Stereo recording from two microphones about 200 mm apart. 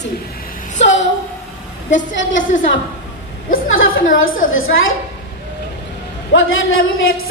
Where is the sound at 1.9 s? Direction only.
70° left (ahead or behind).